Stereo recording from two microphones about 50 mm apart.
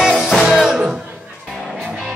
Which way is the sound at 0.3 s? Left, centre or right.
Centre.